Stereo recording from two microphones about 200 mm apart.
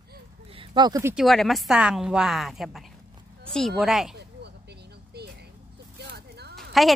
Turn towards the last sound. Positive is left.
turn(degrees=0)  # may be behind; listen again after turning